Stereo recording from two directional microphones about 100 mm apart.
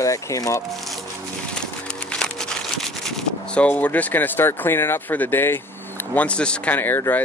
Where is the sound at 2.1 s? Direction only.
5° left (ahead or behind).